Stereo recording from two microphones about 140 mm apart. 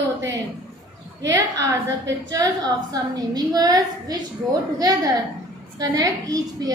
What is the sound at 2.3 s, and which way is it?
A woman's voice, 30° right (ahead or behind).